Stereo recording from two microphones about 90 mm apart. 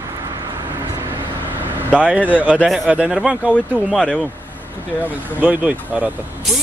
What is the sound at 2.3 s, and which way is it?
Speech, 15° right (ahead or behind).